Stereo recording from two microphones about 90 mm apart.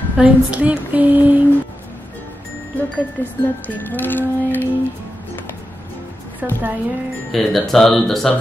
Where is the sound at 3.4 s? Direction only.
20° left (ahead or behind).